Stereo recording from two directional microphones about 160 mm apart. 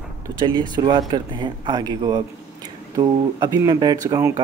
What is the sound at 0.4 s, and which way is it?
A man's voice, 30° right (ahead or behind).